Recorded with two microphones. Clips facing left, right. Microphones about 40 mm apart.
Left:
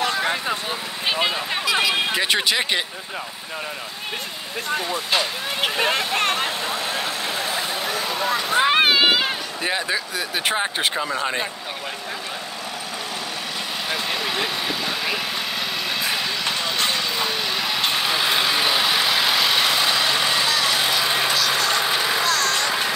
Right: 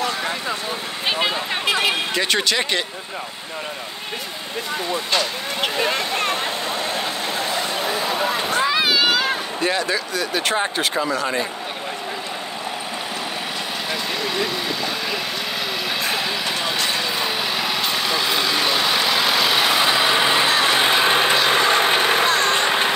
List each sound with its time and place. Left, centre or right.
0.0 s vehicle: left
1.0 s vehicle: centre
1.7 s a sound: right
2.1 s speech: centre
5.8 s speech: left
7.0 s a sound: right
8.5 s boat: left
9.6 s speech: centre
14.2 s vehicle: centre
16.0 s vehicle: centre
17.9 s vehicle: centre; by 22.3 s right
22.3 s vehicle: right